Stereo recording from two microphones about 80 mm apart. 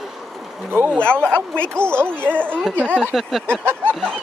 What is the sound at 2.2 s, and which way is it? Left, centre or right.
Speech, centre.